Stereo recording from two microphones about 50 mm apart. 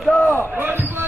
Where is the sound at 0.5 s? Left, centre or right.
Right.